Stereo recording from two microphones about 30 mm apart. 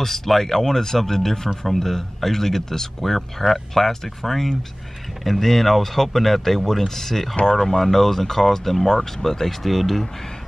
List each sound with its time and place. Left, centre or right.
0.0 s speech: centre
7.4 s speech: left; by 10.0 s centre